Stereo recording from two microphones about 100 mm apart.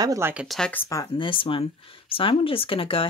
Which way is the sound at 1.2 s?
60° left (ahead or behind).